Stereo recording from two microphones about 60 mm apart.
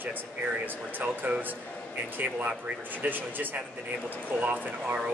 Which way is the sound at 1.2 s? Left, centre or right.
Right.